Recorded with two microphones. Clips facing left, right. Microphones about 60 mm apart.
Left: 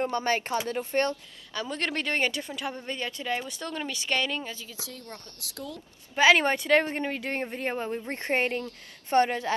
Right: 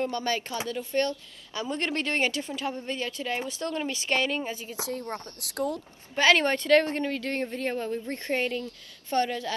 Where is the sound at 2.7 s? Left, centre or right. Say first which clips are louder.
Right 2 dB; left.